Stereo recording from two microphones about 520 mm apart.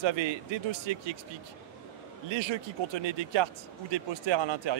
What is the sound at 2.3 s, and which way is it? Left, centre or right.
Speech, right.